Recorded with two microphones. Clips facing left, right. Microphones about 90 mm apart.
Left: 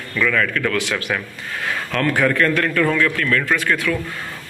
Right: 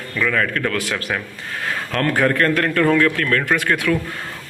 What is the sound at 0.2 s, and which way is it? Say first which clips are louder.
A man's voice: left 1 dB; 30° right (ahead or behind).